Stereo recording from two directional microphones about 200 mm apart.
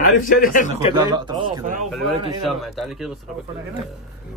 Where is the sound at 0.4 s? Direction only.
45° left (ahead or behind).